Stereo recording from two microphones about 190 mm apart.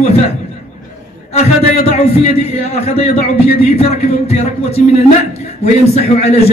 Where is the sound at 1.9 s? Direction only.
35° left (ahead or behind).